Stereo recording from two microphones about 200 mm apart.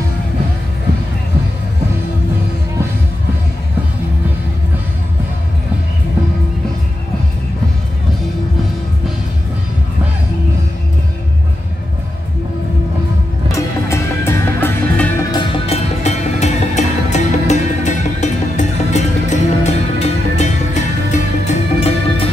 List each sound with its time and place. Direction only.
13.5 s music: 15° left (ahead or behind)
15.3 s music: 30° left (ahead or behind)